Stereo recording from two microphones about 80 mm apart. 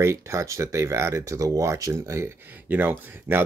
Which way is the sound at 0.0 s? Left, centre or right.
Right.